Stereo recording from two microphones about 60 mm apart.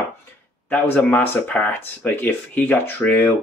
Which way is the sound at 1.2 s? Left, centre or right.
Left.